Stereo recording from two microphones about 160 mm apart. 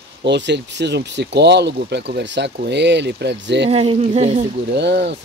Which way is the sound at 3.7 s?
35° right (ahead or behind).